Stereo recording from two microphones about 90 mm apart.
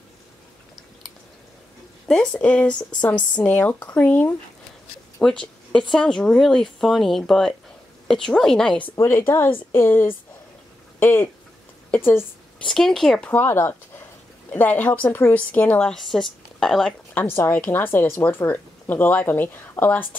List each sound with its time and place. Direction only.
2.0 s speech: 5° left (ahead or behind)
5.2 s speech: 10° left (ahead or behind)
8.9 s speech: 30° left (ahead or behind)
12.6 s speech: 5° left (ahead or behind)
13.3 s speech: 25° left (ahead or behind)
15.0 s speech: 30° left (ahead or behind)
15.3 s speech: 20° left (ahead or behind)
15.9 s speech: centre (ahead or behind)
17.1 s speech: 25° left (ahead or behind)